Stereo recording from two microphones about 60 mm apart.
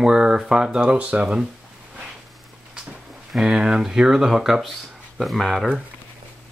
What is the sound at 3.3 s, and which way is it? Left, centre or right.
Speech, centre.